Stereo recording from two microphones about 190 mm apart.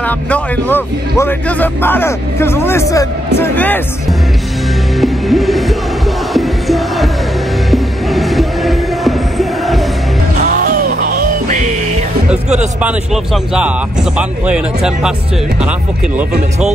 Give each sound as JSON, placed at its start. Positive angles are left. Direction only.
{"t": 0.0, "sound": "speech", "side_deg": 10}
{"t": 4.9, "sound": "music", "side_deg": 0}
{"t": 10.4, "sound": "music", "side_deg": -50}
{"t": 12.8, "sound": "speech", "side_deg": 0}